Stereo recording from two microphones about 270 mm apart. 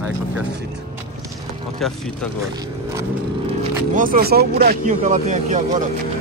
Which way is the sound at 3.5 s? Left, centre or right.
Right.